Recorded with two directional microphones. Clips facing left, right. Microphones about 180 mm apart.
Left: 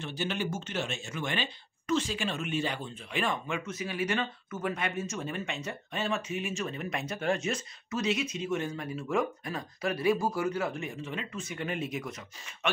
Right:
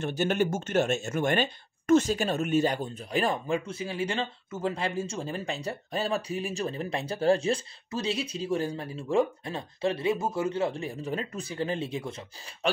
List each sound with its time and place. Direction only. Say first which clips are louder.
0.0 s speech: right 7 dB; 50° right (ahead or behind); by 12.5 s 30° right (ahead or behind)